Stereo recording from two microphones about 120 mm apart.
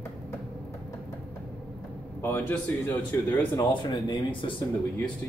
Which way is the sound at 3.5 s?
40° left (ahead or behind).